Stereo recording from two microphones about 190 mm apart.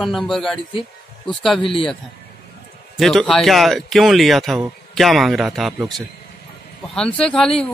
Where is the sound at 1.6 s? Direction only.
30° left (ahead or behind).